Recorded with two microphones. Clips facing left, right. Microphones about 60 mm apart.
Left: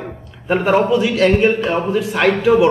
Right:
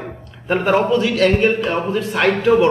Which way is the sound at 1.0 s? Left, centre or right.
Centre.